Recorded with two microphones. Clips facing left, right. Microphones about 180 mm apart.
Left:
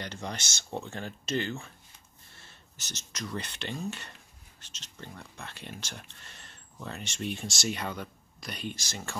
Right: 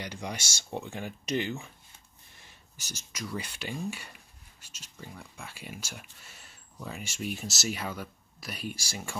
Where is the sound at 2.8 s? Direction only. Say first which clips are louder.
Even; 10° right (ahead or behind).